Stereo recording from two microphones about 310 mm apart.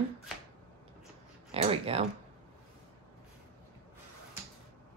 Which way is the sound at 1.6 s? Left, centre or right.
Centre.